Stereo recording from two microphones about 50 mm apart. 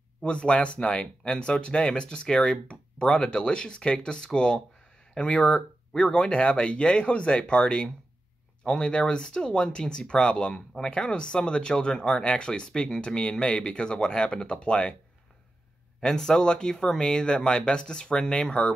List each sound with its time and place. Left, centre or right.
0.2 s speech: centre
16.0 s speech: centre